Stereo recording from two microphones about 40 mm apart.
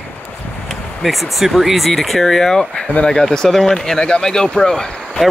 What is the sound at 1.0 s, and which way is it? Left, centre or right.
Speech, centre.